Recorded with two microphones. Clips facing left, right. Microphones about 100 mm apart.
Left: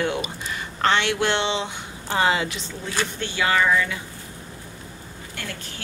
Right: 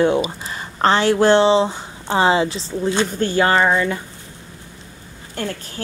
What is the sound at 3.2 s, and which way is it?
Speech, 45° right (ahead or behind).